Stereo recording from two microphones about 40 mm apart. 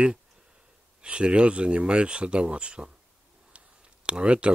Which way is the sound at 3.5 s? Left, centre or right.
Right.